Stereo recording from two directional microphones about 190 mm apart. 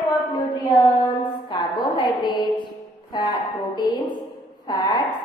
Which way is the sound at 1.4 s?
25° left (ahead or behind).